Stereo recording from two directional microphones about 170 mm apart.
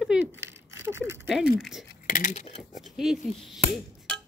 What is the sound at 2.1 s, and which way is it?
Speech, 55° left (ahead or behind).